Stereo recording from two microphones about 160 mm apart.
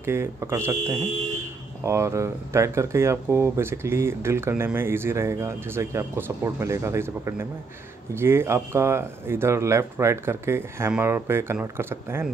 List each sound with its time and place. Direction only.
0.0 s speech: 15° right (ahead or behind)